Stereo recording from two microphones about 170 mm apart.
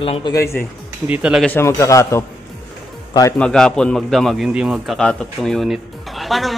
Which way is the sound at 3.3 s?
5° left (ahead or behind).